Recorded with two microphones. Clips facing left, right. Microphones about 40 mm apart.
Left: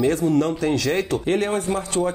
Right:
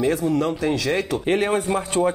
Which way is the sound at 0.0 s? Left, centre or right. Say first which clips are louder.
Left 1 dB; centre.